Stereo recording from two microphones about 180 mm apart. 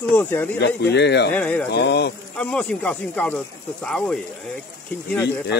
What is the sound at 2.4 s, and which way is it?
Speech, 5° left (ahead or behind).